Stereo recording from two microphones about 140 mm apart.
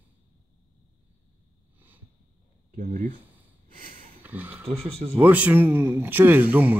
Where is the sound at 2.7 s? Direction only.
80° right.